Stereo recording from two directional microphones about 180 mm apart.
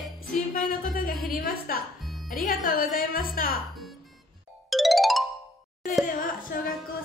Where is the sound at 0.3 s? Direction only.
50° left (ahead or behind).